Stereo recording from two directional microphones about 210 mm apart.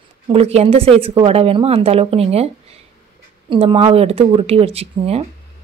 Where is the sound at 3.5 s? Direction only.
25° right (ahead or behind).